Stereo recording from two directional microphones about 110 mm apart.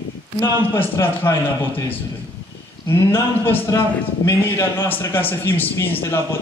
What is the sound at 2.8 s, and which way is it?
A man's voice, 20° left (ahead or behind).